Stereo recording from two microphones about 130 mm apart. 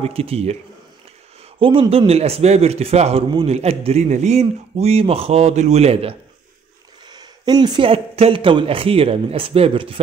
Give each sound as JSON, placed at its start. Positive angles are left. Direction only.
{"t": 0.0, "sound": "speech", "side_deg": -50}
{"t": 7.1, "sound": "speech", "side_deg": -30}